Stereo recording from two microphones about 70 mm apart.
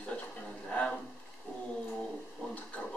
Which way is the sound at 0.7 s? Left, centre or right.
Centre.